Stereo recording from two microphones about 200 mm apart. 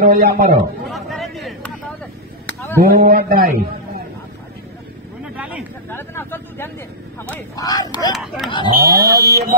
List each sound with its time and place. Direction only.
0.0 s a man's voice: 50° right (ahead or behind)
0.8 s a sound: centre (ahead or behind)
2.4 s chop: 10° left (ahead or behind)
2.8 s a man's voice: 45° right (ahead or behind)
5.3 s a sound: 5° right (ahead or behind)
5.9 s vehicle: 10° left (ahead or behind)
7.5 s speech: 20° left (ahead or behind)
8.1 s speech: centre (ahead or behind)
8.7 s a man's voice: 50° right (ahead or behind)